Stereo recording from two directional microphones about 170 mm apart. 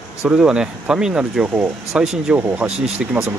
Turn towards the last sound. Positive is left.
turn(degrees=-5)  # may be behind; listen again after turning